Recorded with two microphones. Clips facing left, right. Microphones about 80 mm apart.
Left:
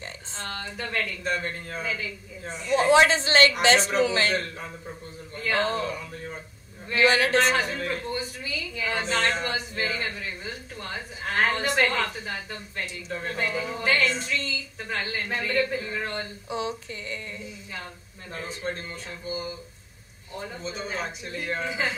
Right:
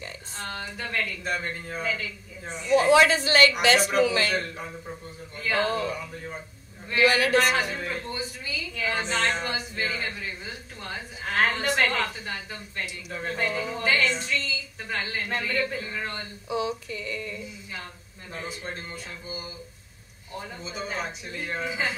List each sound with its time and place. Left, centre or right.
0.5 s a woman's voice: centre
2.7 s a sound: left
5.5 s speech: centre
7.0 s a man's voice: left
7.8 s a woman's voice: centre
16.4 s a sound: left
18.3 s speech: centre
20.6 s a woman's voice: centre